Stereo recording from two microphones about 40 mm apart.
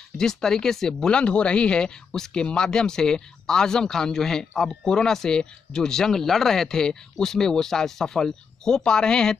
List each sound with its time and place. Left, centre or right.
0.2 s speech: centre
1.2 s speech: left